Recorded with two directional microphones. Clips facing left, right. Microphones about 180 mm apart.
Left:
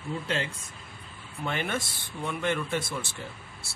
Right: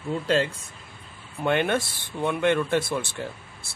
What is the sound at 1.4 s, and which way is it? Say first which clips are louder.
Speech: right 8 dB; 65° right (ahead or behind).